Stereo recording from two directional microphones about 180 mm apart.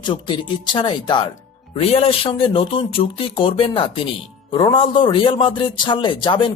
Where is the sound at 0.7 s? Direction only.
25° left (ahead or behind).